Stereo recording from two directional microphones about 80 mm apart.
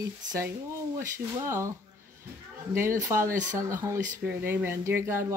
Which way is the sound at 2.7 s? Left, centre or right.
Right.